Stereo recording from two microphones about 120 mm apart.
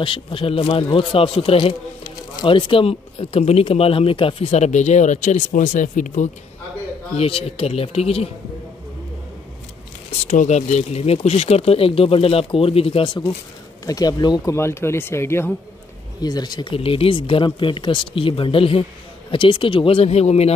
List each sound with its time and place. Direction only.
0.0 s a man's voice: 45° left (ahead or behind); by 6.3 s 90° left
7.2 s speech: 55° left (ahead or behind)
10.2 s speech: 80° left; by 13.2 s 45° left (ahead or behind)
13.8 s speech: 30° left (ahead or behind)
14.5 s speech: 20° left (ahead or behind)
16.2 s a man's voice: 35° left (ahead or behind); by 20.5 s 60° left (ahead or behind)